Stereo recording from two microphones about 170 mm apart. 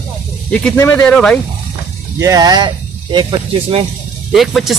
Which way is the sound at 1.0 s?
5° left (ahead or behind).